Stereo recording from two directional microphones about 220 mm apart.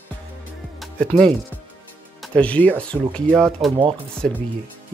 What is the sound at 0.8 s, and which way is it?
Music, 5° left (ahead or behind).